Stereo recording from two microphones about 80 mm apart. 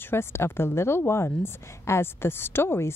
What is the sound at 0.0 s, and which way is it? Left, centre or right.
Speech, left.